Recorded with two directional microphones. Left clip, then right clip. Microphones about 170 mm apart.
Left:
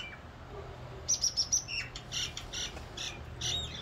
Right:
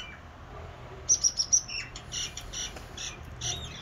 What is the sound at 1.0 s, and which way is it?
Bird, 90° left.